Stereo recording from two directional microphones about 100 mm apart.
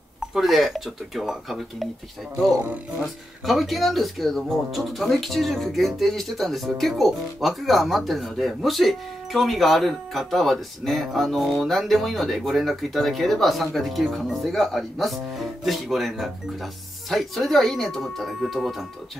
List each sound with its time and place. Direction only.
0.3 s speech: centre (ahead or behind)
2.5 s speech: 20° right (ahead or behind)
3.4 s speech: centre (ahead or behind)